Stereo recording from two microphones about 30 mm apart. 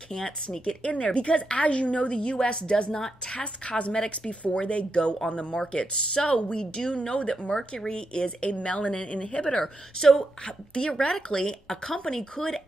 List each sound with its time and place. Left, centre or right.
0.1 s a woman's voice: left
0.8 s a woman's voice: left
3.3 s a woman's voice: left
4.3 s a woman's voice: left
7.0 s a woman's voice: left
8.4 s a woman's voice: left
9.5 s a woman's voice: centre
10.4 s a woman's voice: left
11.3 s a woman's voice: centre